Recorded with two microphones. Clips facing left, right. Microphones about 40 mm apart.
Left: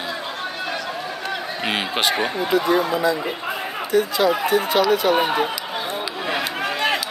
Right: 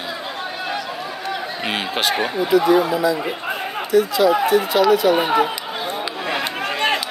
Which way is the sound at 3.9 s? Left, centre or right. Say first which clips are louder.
Right 3 dB; left.